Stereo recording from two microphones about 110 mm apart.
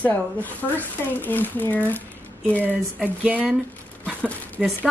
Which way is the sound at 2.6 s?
15° right (ahead or behind).